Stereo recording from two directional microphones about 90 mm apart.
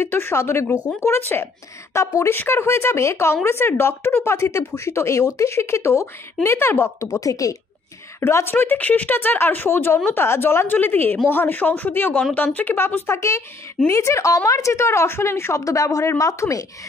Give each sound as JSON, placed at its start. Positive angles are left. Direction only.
{"t": 0.0, "sound": "a woman's voice", "side_deg": 25}